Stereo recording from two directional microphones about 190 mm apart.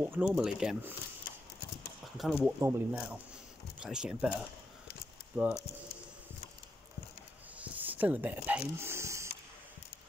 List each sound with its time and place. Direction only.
0.0 s speech: 10° right (ahead or behind)
2.4 s speech: 10° right (ahead or behind)
7.5 s a sound: 10° right (ahead or behind)